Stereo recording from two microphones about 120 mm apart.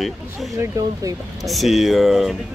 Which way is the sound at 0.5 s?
30° right (ahead or behind).